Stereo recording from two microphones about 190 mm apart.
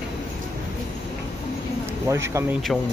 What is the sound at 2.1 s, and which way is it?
Speech, 15° right (ahead or behind).